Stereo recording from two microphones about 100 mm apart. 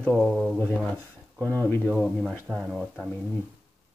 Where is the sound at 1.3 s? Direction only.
20° left (ahead or behind).